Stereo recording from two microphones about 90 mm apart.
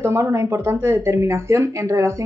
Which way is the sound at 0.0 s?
30° right (ahead or behind).